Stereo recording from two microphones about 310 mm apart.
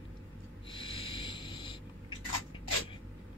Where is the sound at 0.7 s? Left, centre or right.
Centre.